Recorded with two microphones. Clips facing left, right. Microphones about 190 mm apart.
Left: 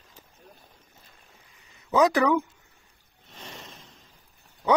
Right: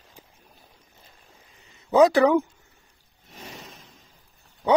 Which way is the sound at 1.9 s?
30° right (ahead or behind).